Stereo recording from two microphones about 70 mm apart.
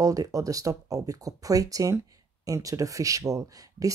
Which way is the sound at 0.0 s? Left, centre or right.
Right.